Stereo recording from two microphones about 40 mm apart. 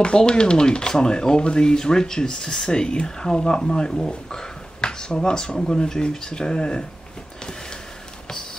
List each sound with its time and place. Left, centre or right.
0.0 s speech: left